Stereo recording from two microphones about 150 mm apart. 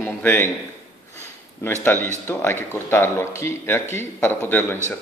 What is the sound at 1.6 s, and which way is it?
Speech, 15° left (ahead or behind).